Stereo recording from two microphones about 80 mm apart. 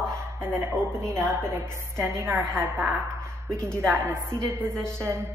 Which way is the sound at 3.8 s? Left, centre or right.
Right.